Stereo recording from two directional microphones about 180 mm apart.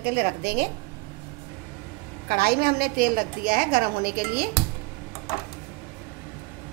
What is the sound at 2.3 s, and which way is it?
A woman's voice, 60° right (ahead or behind).